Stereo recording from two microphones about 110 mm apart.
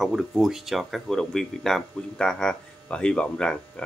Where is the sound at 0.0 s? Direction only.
5° right (ahead or behind).